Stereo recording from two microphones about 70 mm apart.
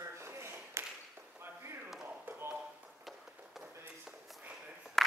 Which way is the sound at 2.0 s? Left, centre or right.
Right.